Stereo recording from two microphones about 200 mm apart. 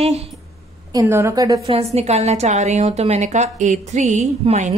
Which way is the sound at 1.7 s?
35° right (ahead or behind).